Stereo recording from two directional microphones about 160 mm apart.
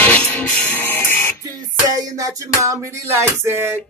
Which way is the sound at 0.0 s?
10° left (ahead or behind).